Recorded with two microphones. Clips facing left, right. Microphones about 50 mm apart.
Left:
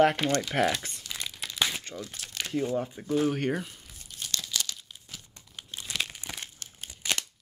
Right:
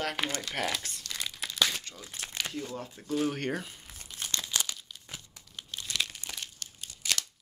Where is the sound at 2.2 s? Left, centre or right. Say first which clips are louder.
Right 2 dB; right.